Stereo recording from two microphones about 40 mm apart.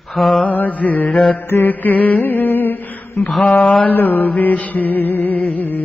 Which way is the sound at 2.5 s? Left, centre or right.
Left.